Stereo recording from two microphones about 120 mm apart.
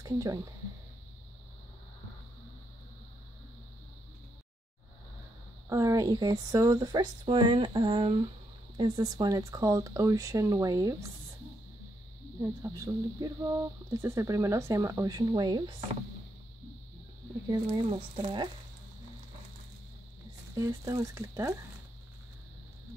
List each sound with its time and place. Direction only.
0.0 s speech: 30° right (ahead or behind)
5.7 s speech: 25° right (ahead or behind); by 8.2 s 50° right (ahead or behind)
8.7 s speech: 35° right (ahead or behind)
12.4 s speech: 25° right (ahead or behind)
17.5 s speech: 40° right (ahead or behind)
20.5 s speech: 30° right (ahead or behind)